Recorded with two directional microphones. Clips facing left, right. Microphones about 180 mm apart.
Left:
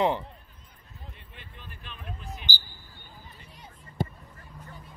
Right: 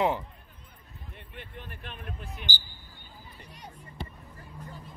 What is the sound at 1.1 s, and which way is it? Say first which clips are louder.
Basketball bounce: right 6 dB; 60° right (ahead or behind).